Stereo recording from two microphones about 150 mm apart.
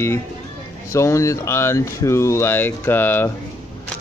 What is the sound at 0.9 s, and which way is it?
Speech, 20° left (ahead or behind).